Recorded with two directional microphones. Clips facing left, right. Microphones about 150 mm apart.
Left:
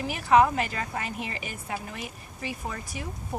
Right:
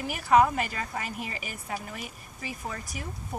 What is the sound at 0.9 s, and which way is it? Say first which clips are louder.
A woman's voice: left 2 dB; centre (ahead or behind).